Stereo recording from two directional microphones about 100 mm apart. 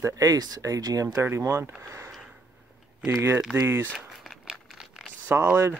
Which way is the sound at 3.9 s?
5° right (ahead or behind).